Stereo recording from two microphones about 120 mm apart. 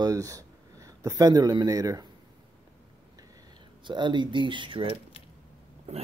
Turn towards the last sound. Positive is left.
turn(degrees=-45)  # may be behind; listen again after turning